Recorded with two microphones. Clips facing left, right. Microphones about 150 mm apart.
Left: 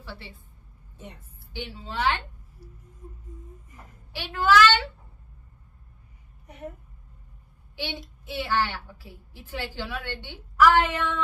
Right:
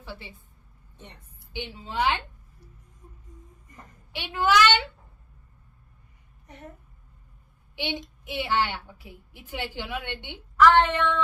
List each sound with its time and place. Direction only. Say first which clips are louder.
0.0 s a woman's voice: right 1 dB; 15° right (ahead or behind)
0.9 s a woman's voice: left 4 dB; 5° left (ahead or behind)
1.5 s a woman's voice: right 1 dB; 20° right (ahead or behind)
4.1 s a woman's voice: left 2 dB; 20° right (ahead or behind)
6.4 s a child's voice: left 6 dB; 10° left (ahead or behind)
7.7 s child singing: right 3 dB; 20° right (ahead or behind)
8.3 s a woman's voice: even; 20° right (ahead or behind)
10.6 s a sound: right 1 dB; 10° left (ahead or behind)